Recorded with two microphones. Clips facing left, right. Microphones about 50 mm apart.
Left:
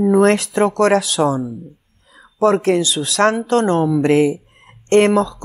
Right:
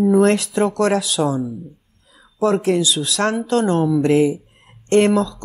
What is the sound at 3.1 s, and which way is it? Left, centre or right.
Speech, left.